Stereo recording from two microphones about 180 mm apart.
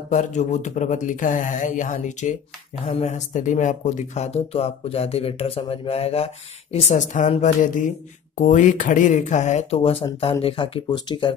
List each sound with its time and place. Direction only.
0.1 s speech: 40° left (ahead or behind); by 11.3 s 25° left (ahead or behind)